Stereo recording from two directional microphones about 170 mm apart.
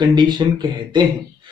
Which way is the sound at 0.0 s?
25° right (ahead or behind).